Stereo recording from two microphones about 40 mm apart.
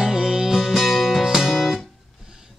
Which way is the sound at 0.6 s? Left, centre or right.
Centre.